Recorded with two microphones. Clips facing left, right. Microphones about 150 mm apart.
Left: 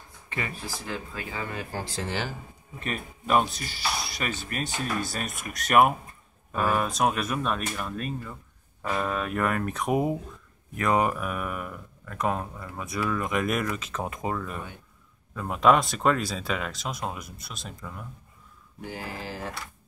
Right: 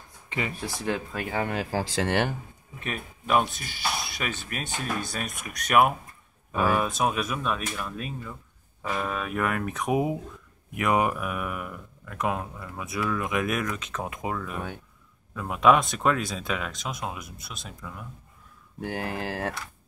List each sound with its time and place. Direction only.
0.3 s speech: 20° right (ahead or behind)
0.8 s speech: 65° right (ahead or behind)
2.8 s speech: 5° right (ahead or behind)
18.9 s speech: 70° right (ahead or behind)